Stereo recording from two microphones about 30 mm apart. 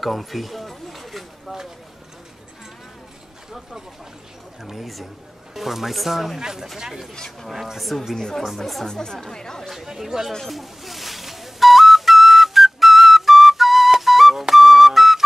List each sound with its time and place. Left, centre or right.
0.0 s a sound: centre
4.6 s speech: centre
6.4 s speech: centre
8.8 s speech: left
9.7 s speech: centre
10.5 s music: centre
14.5 s flute: centre